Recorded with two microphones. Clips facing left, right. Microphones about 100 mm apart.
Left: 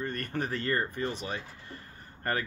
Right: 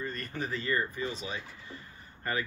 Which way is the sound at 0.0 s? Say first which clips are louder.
Left 3 dB; 60° left (ahead or behind).